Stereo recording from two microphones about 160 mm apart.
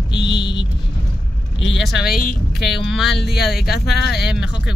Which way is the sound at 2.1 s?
65° left (ahead or behind).